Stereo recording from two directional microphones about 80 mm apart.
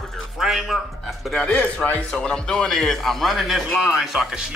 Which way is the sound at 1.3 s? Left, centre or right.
Centre.